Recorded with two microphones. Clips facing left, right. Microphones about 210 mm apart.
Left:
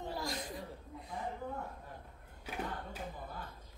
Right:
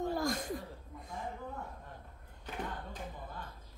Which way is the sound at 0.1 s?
50° right (ahead or behind).